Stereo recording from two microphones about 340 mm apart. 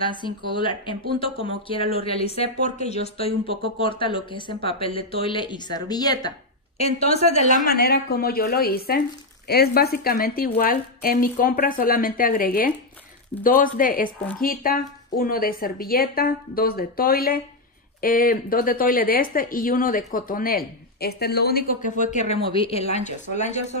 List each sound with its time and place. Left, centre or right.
0.0 s speech: centre